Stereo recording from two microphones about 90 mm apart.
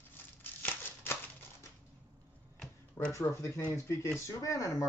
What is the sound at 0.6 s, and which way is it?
Scissors, 25° left (ahead or behind).